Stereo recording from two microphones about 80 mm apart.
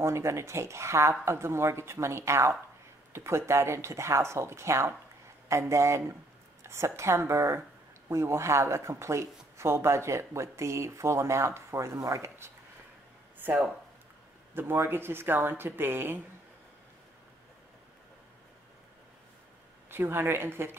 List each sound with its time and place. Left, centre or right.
0.0 s speech: right
14.5 s speech: right
19.9 s speech: right